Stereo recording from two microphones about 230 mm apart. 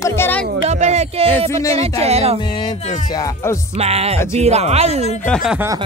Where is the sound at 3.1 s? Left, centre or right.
Centre.